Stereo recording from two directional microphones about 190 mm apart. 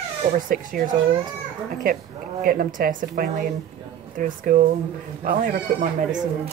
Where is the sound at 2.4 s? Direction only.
50° right (ahead or behind).